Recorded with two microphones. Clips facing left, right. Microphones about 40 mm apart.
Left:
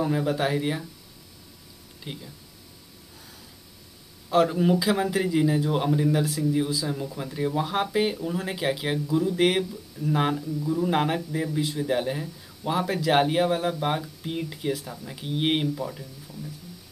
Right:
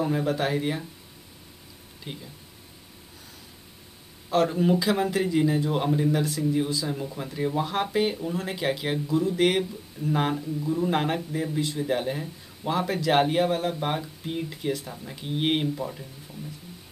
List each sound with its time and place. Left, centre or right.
0.0 s speech: centre
2.1 s speech: centre
4.3 s speech: centre
10.0 s speech: right
10.3 s speech: centre
10.9 s speech: centre